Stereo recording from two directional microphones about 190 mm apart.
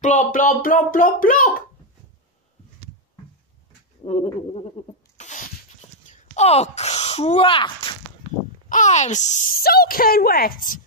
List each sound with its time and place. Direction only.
0.0 s speech: 40° left (ahead or behind)
4.0 s bird: 35° left (ahead or behind)
5.1 s a sound: 40° left (ahead or behind)
8.6 s speech: 40° left (ahead or behind)